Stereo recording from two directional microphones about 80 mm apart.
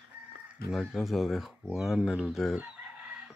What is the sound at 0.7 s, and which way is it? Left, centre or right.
Speech, centre.